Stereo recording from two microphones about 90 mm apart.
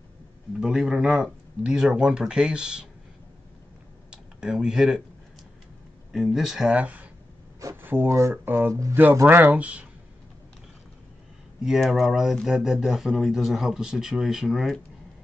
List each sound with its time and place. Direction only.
0.6 s speech: 5° right (ahead or behind)
4.1 s a sound: 10° right (ahead or behind)
6.1 s speech: 5° right (ahead or behind); by 9.5 s 25° right (ahead or behind)
9.5 s speech: 15° right (ahead or behind)
11.6 s speech: centre (ahead or behind)